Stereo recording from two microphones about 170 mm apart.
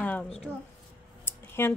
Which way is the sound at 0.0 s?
10° left (ahead or behind).